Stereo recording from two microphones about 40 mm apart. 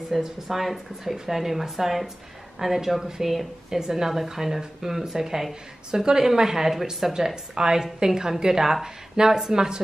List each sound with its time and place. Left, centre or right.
0.1 s a woman's voice: centre